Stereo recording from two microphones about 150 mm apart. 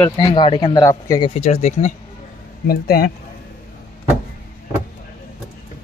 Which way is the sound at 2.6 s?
90° left.